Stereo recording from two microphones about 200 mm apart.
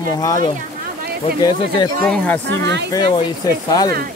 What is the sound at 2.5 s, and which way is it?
Speech, 60° right (ahead or behind).